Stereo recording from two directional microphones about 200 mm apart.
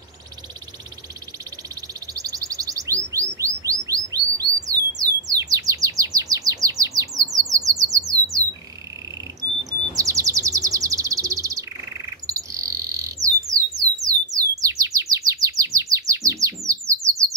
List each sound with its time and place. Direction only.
2.1 s chirp: 15° right (ahead or behind)
7.2 s bird: 15° right (ahead or behind)
9.4 s chirp: 15° right (ahead or behind)
12.3 s bird: 15° right (ahead or behind)